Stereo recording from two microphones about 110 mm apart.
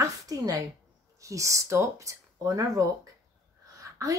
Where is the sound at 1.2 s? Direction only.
30° right (ahead or behind).